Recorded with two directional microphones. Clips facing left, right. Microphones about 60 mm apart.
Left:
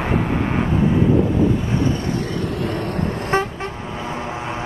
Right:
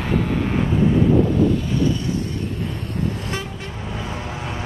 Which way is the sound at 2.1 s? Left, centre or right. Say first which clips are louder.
Left 3 dB; left.